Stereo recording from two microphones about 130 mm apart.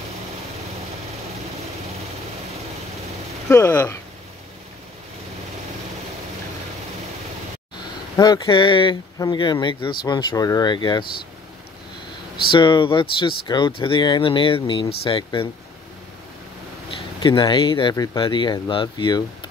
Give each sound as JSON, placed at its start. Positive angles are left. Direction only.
{"t": 3.4, "sound": "speech", "side_deg": 15}
{"t": 8.2, "sound": "speech", "side_deg": 35}
{"t": 12.4, "sound": "speech", "side_deg": 35}
{"t": 17.2, "sound": "speech", "side_deg": 35}